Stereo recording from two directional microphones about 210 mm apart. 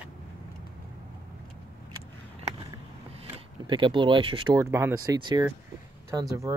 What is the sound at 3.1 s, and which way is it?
Speech, 25° right (ahead or behind).